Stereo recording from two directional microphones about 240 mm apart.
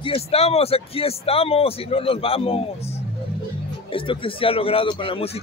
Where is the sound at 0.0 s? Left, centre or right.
Left.